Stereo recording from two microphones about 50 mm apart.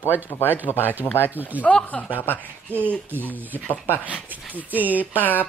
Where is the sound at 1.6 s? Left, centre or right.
Left.